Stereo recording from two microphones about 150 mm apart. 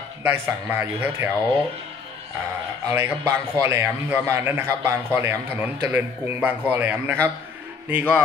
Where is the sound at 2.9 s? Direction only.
20° right (ahead or behind).